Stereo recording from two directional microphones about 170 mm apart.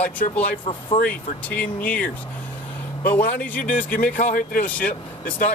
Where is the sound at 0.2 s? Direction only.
55° left (ahead or behind).